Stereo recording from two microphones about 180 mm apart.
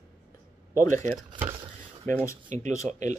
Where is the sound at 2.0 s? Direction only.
15° left (ahead or behind).